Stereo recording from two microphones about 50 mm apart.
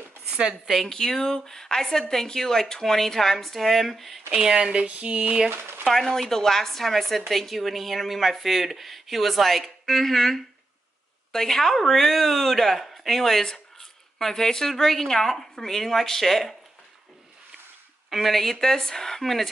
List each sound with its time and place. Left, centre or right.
0.7 s a woman's voice: centre
0.9 s speech: centre
4.3 s speech: centre
4.6 s a sound: right
5.5 s speech: right
5.9 s a woman's voice: centre
18.1 s a woman's voice: centre